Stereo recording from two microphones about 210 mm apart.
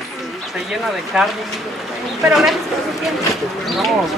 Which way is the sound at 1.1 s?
Centre (ahead or behind).